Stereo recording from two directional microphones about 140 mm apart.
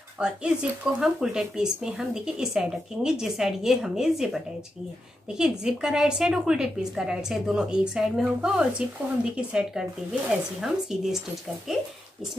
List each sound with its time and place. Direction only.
0.2 s a woman's voice: 5° right (ahead or behind)
5.4 s a woman's voice: 5° right (ahead or behind)